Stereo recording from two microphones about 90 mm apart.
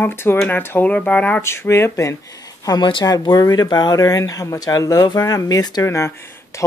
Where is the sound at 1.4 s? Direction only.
30° left (ahead or behind).